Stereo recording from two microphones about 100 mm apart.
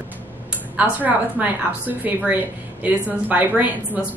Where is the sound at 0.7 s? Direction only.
15° right (ahead or behind).